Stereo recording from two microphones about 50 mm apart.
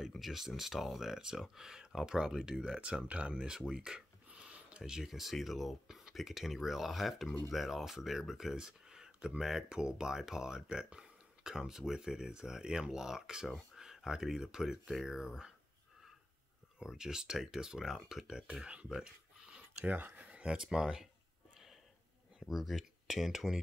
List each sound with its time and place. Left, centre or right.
0.1 s speech: centre
4.3 s speech: right
16.8 s speech: centre
18.9 s a sound: centre
19.8 s speech: right; by 21.1 s centre
22.5 s speech: centre